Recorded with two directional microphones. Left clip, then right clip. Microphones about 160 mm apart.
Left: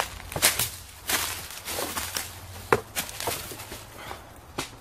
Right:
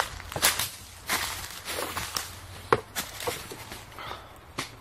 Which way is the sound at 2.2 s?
20° right (ahead or behind).